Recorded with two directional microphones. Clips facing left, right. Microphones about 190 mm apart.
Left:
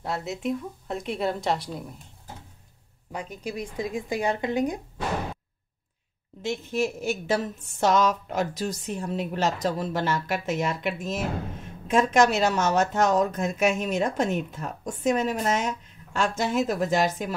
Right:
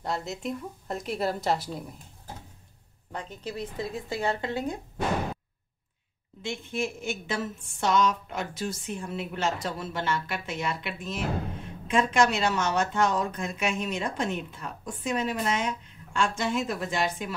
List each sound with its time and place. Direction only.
0.0 s a woman's voice: 5° left (ahead or behind)
3.1 s speech: 10° left (ahead or behind)
6.4 s a woman's voice: 40° left (ahead or behind)